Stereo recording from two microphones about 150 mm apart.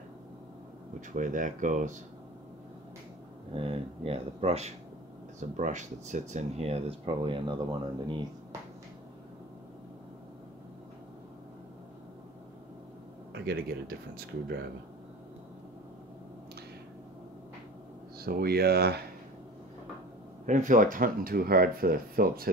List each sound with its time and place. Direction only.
1.1 s speech: 60° right (ahead or behind)
3.5 s speech: 40° right (ahead or behind)
13.3 s speech: 90° right
18.2 s speech: 90° right
20.4 s speech: 55° right (ahead or behind); by 22.5 s 80° right